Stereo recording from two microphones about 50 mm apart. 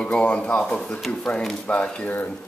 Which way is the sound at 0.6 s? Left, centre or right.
Centre.